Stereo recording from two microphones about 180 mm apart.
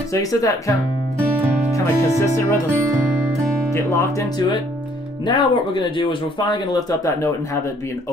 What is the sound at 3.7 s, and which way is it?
Speech, 15° left (ahead or behind).